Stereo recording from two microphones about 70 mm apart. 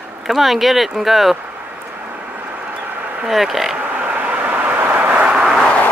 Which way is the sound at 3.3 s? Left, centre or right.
Centre.